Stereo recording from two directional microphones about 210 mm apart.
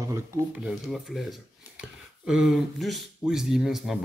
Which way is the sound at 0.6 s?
Centre (ahead or behind).